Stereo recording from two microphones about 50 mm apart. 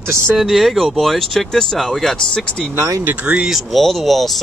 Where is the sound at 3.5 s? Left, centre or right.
Centre.